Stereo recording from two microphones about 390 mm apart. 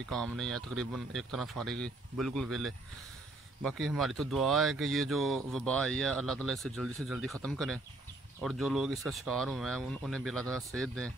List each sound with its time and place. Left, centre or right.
0.1 s speech: centre